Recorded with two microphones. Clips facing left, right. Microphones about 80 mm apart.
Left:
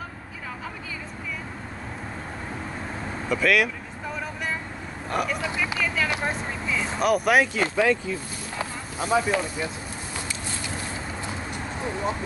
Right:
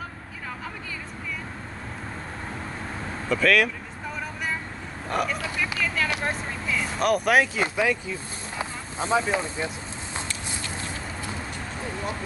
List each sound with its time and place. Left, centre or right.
3.3 s speech: centre
5.1 s speech: centre
7.6 s speech: centre
9.0 s speech: right